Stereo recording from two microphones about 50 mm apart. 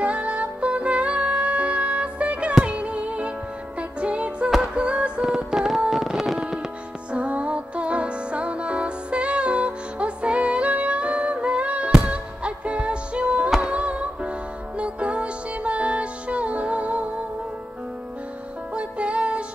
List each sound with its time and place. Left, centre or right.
0.0 s music: right; by 6.4 s centre
7.1 s music: right
18.8 s music: right